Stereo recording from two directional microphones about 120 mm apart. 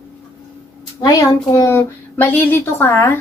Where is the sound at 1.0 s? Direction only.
30° left (ahead or behind).